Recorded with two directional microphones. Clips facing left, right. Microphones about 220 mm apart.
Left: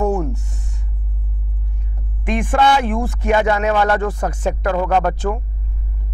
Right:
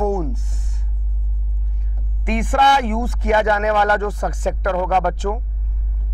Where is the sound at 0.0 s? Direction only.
25° left (ahead or behind).